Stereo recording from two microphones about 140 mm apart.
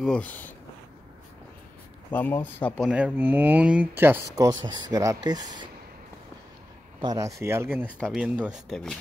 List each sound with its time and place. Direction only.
0.0 s speech: 10° left (ahead or behind)
2.0 s speech: 15° left (ahead or behind)
2.9 s speech: 10° right (ahead or behind)
4.5 s speech: 30° right (ahead or behind)
7.0 s speech: 25° right (ahead or behind); by 8.9 s centre (ahead or behind)